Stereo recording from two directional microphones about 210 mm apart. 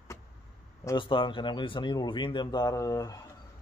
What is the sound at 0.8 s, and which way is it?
Speech, 20° left (ahead or behind).